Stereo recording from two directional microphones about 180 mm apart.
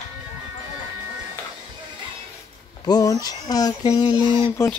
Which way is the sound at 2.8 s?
20° left (ahead or behind).